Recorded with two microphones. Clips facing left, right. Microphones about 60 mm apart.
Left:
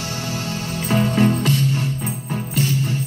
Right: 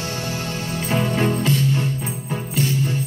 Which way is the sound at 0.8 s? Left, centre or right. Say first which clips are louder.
Left 3 dB; right.